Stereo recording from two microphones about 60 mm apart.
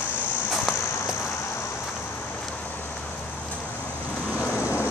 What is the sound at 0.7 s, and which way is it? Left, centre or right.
Walk, centre.